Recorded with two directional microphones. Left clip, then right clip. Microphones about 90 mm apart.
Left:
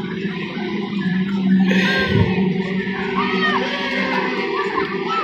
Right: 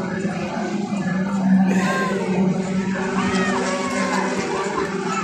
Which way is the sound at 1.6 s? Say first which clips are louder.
Left 3 dB; 5° right (ahead or behind).